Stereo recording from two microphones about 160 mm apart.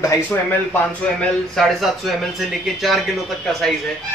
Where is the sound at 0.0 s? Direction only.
15° left (ahead or behind).